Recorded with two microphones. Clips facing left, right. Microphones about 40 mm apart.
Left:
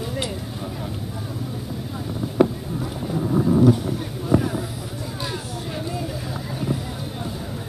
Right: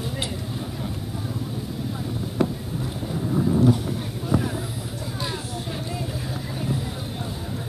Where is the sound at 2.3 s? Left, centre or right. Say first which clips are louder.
Left 6 dB; centre.